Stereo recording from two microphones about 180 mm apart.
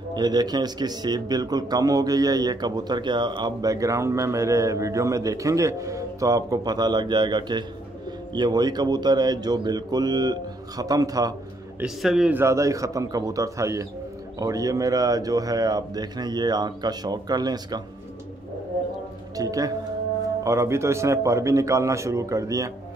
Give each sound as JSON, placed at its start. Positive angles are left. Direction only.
{"t": 0.1, "sound": "speech", "side_deg": -25}
{"t": 11.8, "sound": "a man's voice", "side_deg": 0}
{"t": 19.3, "sound": "music", "side_deg": -20}
{"t": 20.4, "sound": "a man's voice", "side_deg": -15}